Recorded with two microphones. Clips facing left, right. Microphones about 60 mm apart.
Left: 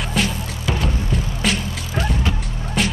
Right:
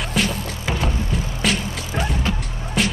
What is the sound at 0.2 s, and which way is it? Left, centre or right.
Music, centre.